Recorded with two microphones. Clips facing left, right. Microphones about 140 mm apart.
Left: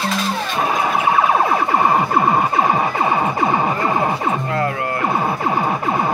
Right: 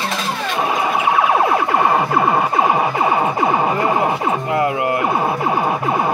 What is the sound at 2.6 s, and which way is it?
Music, 15° right (ahead or behind).